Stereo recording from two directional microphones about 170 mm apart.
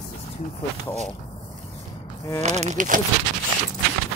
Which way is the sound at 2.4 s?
40° right (ahead or behind).